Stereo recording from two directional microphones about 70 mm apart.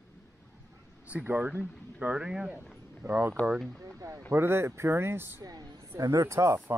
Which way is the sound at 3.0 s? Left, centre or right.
Right.